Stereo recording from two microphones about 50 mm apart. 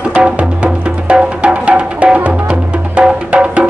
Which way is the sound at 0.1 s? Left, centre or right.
Right.